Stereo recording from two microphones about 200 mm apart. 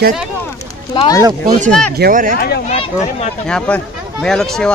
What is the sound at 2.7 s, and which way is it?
Speech, 30° left (ahead or behind).